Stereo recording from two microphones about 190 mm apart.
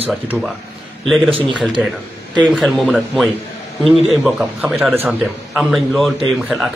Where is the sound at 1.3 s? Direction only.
30° right (ahead or behind).